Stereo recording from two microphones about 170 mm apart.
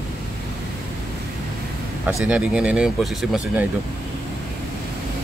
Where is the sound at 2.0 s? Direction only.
5° right (ahead or behind).